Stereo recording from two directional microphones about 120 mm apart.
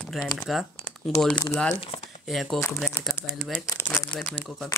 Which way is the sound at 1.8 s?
55° left (ahead or behind).